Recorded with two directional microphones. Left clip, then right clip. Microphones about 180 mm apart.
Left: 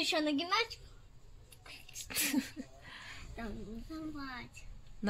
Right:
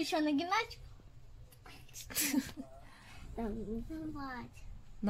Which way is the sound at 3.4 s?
15° left (ahead or behind).